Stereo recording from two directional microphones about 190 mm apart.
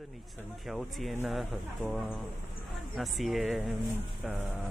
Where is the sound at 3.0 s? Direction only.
Centre (ahead or behind).